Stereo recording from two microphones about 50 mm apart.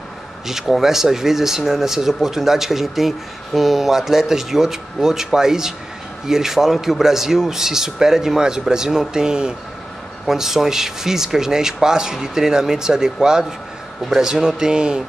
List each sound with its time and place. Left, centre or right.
0.5 s speech: centre